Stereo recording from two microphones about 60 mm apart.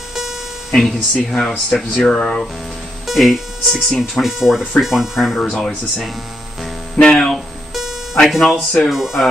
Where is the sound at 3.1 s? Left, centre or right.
Centre.